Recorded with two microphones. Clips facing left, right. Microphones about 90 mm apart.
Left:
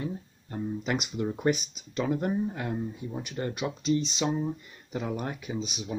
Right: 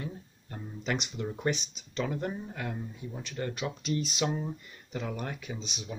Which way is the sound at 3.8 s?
5° right (ahead or behind).